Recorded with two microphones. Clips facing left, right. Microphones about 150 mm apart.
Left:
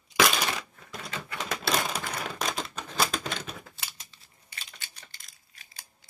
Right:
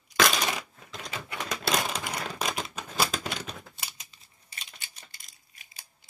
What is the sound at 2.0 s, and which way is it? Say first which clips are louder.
Typewriter: even; 10° right (ahead or behind).